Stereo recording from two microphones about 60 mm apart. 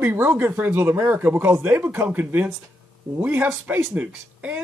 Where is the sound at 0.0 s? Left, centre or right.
Right.